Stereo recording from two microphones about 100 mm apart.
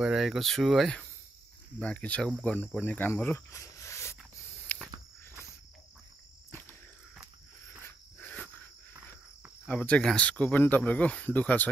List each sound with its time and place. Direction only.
0.0 s speech: 5° right (ahead or behind); by 3.4 s 20° left (ahead or behind)
3.4 s a sound: 30° left (ahead or behind)
7.8 s insect: 15° left (ahead or behind)
9.7 s speech: 15° left (ahead or behind)